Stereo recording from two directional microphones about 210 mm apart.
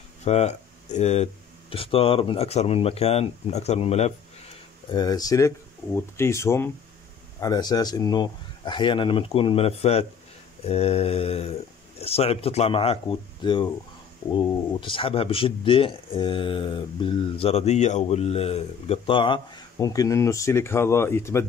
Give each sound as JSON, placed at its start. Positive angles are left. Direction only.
{"t": 0.2, "sound": "speech", "side_deg": 30}
{"t": 4.9, "sound": "speech", "side_deg": 20}